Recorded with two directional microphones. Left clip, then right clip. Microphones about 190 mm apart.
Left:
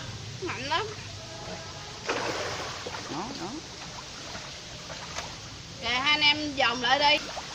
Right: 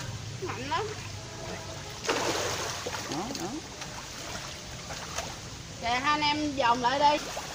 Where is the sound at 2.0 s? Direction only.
40° right (ahead or behind).